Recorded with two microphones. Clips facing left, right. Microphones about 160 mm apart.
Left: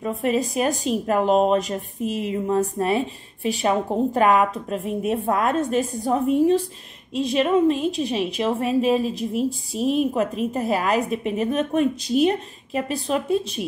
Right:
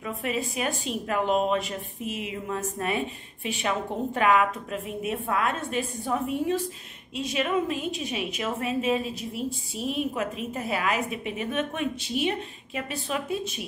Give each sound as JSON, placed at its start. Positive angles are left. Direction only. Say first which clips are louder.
{"t": 0.0, "sound": "a woman's voice", "louder": "left 8 dB", "side_deg": 40}